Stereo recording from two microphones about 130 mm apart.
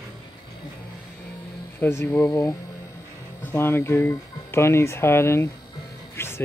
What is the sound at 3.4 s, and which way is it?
Speech, 15° left (ahead or behind).